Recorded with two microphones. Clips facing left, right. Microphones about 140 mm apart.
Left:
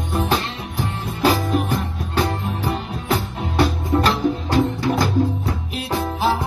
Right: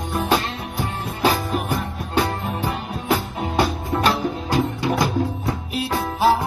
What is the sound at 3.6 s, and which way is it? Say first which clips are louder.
Music: left 2 dB; 10° right (ahead or behind).